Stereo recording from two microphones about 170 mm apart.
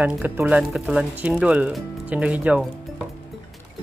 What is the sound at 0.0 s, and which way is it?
Speech, 10° right (ahead or behind).